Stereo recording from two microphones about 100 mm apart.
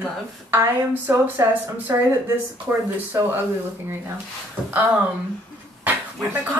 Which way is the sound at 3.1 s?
35° right (ahead or behind).